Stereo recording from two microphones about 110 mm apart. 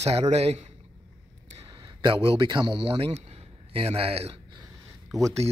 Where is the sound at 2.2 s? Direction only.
55° right (ahead or behind).